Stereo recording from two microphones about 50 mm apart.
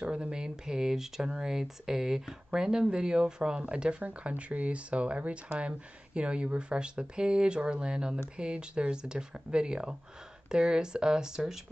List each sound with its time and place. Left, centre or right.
0.0 s speech: centre